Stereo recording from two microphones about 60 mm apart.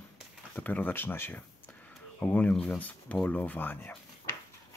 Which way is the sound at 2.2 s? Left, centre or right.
Left.